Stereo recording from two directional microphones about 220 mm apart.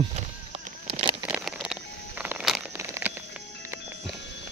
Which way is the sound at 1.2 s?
5° right (ahead or behind).